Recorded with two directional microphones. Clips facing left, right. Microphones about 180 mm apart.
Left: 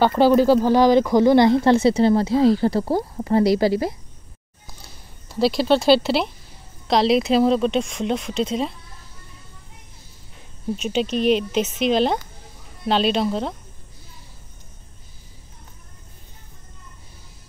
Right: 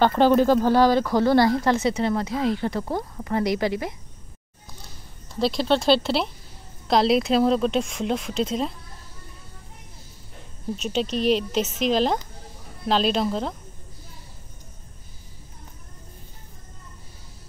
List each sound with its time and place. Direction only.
0.0 s speech: 5° left (ahead or behind); by 3.9 s 35° left (ahead or behind)
5.3 s speech: 5° left (ahead or behind)
10.8 s speech: centre (ahead or behind)